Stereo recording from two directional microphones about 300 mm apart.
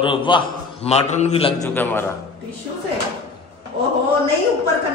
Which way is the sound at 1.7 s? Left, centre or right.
Centre.